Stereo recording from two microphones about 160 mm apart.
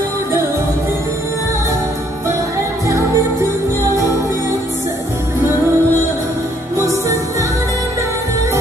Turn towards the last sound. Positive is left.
turn(degrees=-20)  # may be behind; listen again after turning